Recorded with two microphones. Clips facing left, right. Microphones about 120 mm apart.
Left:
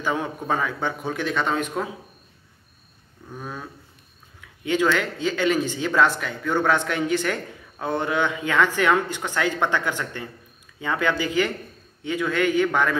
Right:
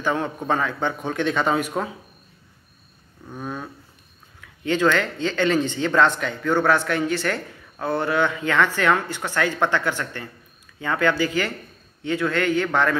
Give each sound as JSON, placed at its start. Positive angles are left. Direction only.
{"t": 0.0, "sound": "speech", "side_deg": 10}
{"t": 3.3, "sound": "a sound", "side_deg": -10}
{"t": 4.6, "sound": "speech", "side_deg": 10}